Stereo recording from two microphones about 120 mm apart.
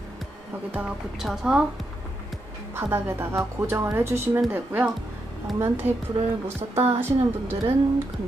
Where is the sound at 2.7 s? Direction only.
20° right (ahead or behind).